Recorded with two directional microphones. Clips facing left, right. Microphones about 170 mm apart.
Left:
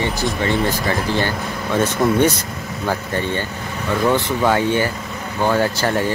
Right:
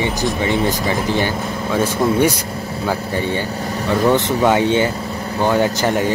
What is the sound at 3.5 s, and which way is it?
Vehicle, 40° right (ahead or behind).